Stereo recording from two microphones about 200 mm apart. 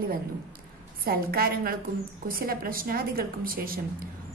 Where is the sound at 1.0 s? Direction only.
50° right (ahead or behind).